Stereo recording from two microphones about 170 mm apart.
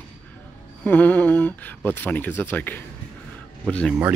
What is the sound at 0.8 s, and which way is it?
Speech, 10° left (ahead or behind).